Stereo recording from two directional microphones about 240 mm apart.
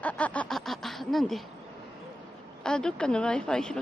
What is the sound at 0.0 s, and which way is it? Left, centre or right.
Snicker, centre.